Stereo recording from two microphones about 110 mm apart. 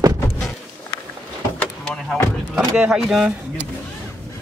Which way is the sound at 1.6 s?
5° left (ahead or behind).